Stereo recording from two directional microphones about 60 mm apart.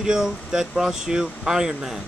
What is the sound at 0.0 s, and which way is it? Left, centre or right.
Speech, centre.